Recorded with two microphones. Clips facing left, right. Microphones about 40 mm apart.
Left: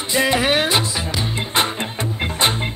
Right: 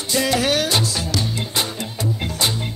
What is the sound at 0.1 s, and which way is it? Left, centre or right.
Music, left.